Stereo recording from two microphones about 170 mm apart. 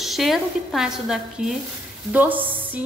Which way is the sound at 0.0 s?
Centre (ahead or behind).